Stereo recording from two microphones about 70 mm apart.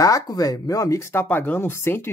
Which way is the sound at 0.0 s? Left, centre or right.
Left.